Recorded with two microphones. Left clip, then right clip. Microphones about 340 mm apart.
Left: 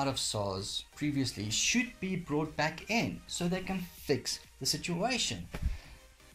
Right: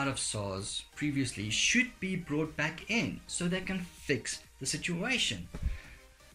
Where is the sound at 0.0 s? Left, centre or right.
Centre.